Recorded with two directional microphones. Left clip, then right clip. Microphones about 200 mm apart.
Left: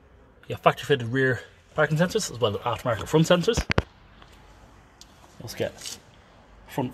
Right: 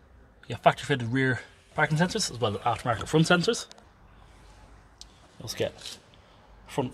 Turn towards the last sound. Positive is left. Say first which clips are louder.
# left 1 dB
turn(degrees=10)  # may be behind; listen again after turning